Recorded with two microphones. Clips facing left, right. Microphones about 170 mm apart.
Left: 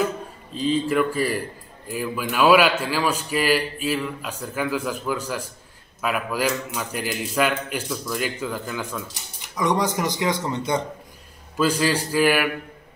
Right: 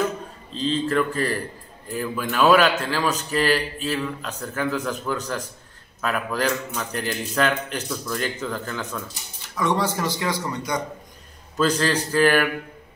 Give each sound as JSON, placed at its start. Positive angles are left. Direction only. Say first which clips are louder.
{"t": 0.6, "sound": "a man's voice", "louder": "left 1 dB", "side_deg": 10}
{"t": 11.5, "sound": "a man's voice", "louder": "even", "side_deg": 10}